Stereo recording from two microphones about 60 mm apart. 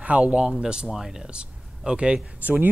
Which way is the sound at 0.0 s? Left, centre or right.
Right.